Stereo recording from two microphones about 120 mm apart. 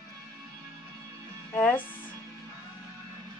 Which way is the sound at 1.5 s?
15° left (ahead or behind).